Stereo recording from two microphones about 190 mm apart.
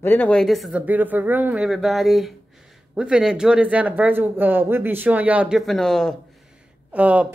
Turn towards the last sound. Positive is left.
turn(degrees=-5)  # may be behind; listen again after turning